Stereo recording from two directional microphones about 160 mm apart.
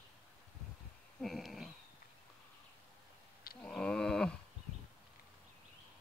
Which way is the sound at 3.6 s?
5° left (ahead or behind).